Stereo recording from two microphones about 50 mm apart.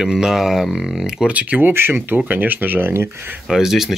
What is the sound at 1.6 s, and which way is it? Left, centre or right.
Speech, right.